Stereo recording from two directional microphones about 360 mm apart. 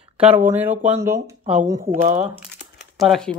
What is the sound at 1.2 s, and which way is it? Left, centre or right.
Speech, centre.